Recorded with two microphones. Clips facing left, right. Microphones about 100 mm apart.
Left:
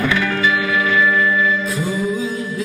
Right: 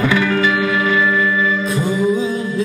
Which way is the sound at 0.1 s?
25° right (ahead or behind).